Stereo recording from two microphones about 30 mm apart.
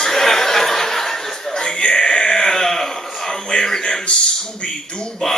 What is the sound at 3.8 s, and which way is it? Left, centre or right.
A man's voice, left.